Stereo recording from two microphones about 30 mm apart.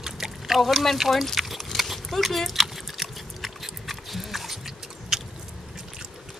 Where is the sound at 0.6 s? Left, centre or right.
Centre.